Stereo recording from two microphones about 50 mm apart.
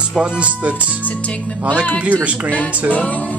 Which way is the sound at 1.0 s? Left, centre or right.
Left.